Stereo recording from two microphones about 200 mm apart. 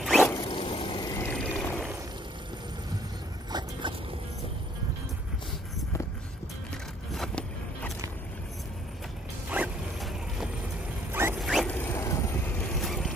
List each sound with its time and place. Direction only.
0.0 s zipper: centre (ahead or behind)
0.4 s vehicle: 25° left (ahead or behind); by 2.0 s centre (ahead or behind)
3.5 s dog: 20° right (ahead or behind)
7.2 s vehicle: 5° left (ahead or behind)
9.5 s mechanisms: 5° right (ahead or behind)
11.1 s rodents: 10° right (ahead or behind)
11.3 s rodents: centre (ahead or behind)
11.7 s vehicle: 10° left (ahead or behind)